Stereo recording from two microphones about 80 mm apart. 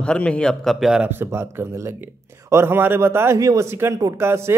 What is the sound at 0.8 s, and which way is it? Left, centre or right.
Speech, centre.